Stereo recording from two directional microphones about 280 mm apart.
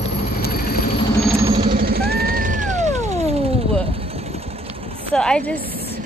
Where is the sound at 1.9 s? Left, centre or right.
Right.